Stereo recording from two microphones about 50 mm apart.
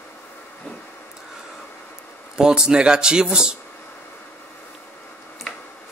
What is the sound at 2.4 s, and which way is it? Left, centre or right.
Speech, centre.